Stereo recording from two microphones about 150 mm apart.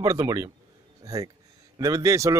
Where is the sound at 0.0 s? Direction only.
20° right (ahead or behind).